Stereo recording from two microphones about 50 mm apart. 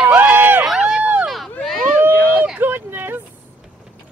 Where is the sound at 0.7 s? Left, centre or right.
Centre.